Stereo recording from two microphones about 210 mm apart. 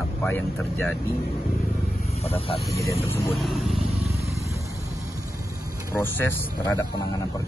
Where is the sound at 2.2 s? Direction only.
30° left (ahead or behind).